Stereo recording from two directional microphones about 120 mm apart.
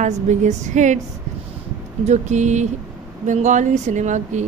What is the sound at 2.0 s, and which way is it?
A woman's voice, 80° right.